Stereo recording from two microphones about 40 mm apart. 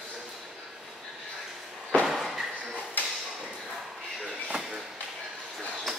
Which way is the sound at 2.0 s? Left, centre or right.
Centre.